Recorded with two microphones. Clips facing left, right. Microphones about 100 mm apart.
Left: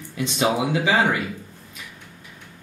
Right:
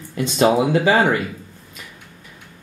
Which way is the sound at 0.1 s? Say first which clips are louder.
Right 6 dB; 45° right (ahead or behind).